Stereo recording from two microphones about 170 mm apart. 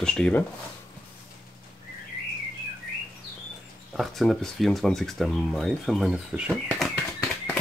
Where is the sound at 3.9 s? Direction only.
Centre (ahead or behind).